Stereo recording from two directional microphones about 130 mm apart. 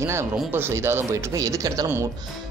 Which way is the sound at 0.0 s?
20° right (ahead or behind).